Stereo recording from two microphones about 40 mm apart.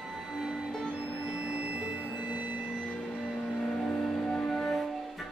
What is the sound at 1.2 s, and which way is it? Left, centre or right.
Music, right.